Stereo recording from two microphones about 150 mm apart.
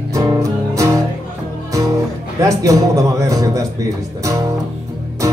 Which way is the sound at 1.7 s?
20° right (ahead or behind).